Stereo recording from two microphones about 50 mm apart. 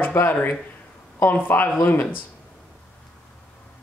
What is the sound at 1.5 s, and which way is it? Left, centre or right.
Speech, left.